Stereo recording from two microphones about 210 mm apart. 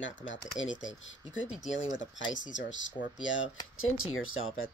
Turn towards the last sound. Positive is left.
turn(degrees=75)  # may be behind; listen again after turning